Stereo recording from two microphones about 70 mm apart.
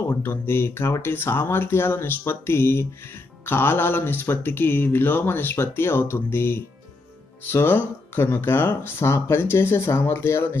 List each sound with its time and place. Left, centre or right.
0.1 s speech: left